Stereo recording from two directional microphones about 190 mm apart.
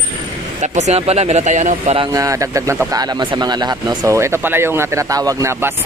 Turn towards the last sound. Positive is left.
turn(degrees=-15)  # may be behind; listen again after turning